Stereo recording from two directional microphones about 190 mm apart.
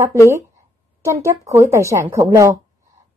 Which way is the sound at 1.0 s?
15° right (ahead or behind).